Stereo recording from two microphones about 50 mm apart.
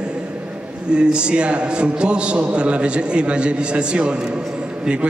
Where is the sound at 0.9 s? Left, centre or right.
Centre.